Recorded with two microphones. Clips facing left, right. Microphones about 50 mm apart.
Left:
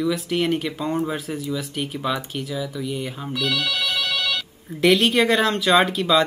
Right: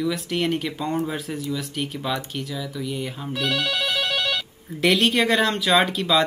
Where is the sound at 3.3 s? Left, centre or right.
Right.